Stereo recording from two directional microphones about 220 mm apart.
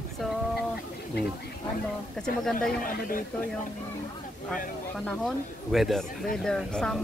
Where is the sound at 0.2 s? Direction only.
Centre (ahead or behind).